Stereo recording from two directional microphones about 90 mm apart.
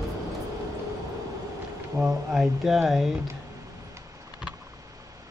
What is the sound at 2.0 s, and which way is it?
Speech, 5° right (ahead or behind).